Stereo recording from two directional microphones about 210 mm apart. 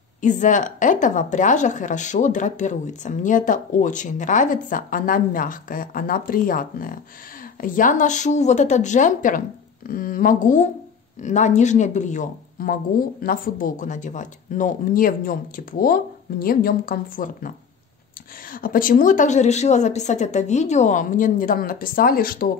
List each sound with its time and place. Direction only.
0.2 s speech: 35° left (ahead or behind)
18.5 s speech: 40° left (ahead or behind)